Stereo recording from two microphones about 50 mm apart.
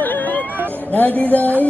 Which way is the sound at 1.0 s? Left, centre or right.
Left.